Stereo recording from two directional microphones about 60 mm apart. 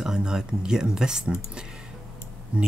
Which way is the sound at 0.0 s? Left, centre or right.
Centre.